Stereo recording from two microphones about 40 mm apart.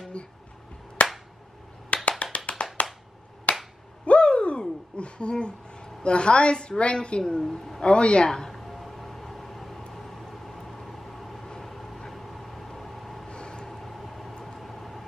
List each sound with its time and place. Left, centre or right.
0.2 s a woman's voice: left
1.0 s clapping: left
1.9 s a sound: left
2.3 s clapping: left
2.8 s a sound: left
3.5 s finger snapping: left
4.0 s owl: left
6.0 s a woman's voice: left
7.4 s a man's voice: centre
7.8 s a woman's voice: left
8.3 s a sound: centre
9.9 s vehicle: centre
13.3 s vehicle: left
13.7 s vehicle: centre